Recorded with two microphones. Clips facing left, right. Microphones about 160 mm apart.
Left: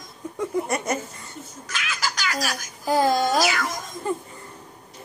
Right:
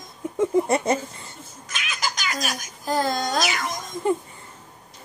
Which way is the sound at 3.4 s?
20° right (ahead or behind).